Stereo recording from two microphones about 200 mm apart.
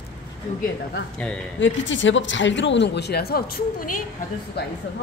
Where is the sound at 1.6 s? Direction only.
70° left (ahead or behind); by 4.0 s 45° left (ahead or behind).